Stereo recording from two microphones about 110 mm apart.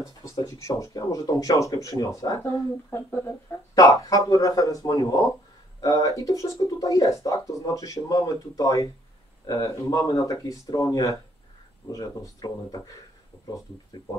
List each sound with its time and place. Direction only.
0.0 s speech: 30° left (ahead or behind)